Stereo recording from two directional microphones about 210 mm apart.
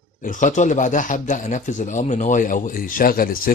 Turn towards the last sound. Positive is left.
turn(degrees=45)  # may be behind; listen again after turning